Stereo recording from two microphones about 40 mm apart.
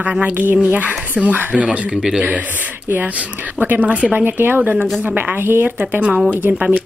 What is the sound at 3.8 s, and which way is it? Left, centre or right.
Speech, right.